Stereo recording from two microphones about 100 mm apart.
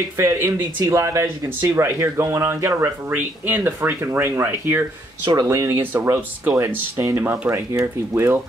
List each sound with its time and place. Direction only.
0.2 s speech: 25° right (ahead or behind)
3.1 s speech: 20° right (ahead or behind)
5.3 s speech: 35° right (ahead or behind)
5.8 s speech: 20° right (ahead or behind)